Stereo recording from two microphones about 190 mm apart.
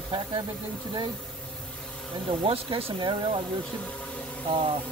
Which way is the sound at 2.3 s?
30° right (ahead or behind).